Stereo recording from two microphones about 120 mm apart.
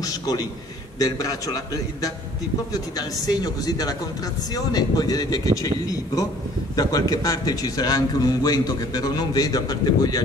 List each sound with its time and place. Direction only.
0.0 s a man's voice: 30° left (ahead or behind)